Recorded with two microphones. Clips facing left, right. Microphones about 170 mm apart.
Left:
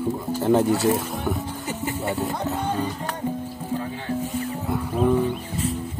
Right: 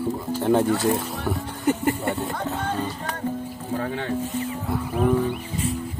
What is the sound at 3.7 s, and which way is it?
Music, 65° right (ahead or behind).